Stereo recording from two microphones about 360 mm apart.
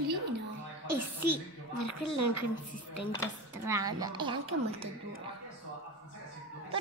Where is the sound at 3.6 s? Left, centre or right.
Centre.